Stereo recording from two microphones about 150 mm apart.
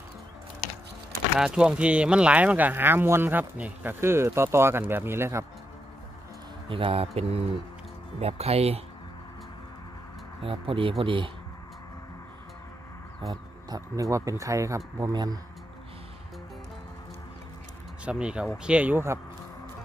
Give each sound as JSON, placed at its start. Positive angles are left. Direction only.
{"t": 1.4, "sound": "speech", "side_deg": -5}
{"t": 6.7, "sound": "speech", "side_deg": -40}
{"t": 10.4, "sound": "speech", "side_deg": -35}
{"t": 13.3, "sound": "speech", "side_deg": -25}
{"t": 18.0, "sound": "speech", "side_deg": -5}